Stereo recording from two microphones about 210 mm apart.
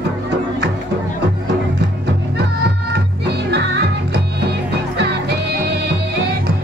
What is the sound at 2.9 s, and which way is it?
Music, 55° right (ahead or behind).